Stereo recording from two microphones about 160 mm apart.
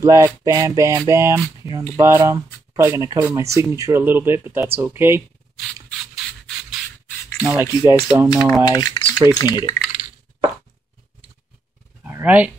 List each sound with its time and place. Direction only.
0.0 s speech: 20° right (ahead or behind)
7.4 s speech: 15° right (ahead or behind)
8.6 s a sound: 25° left (ahead or behind)
9.4 s speech: 25° left (ahead or behind)
12.0 s speech: 10° right (ahead or behind)